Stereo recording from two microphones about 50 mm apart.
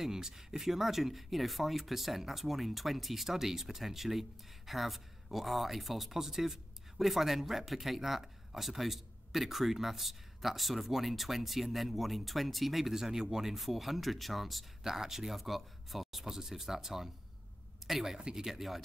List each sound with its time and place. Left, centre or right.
0.0 s speech: centre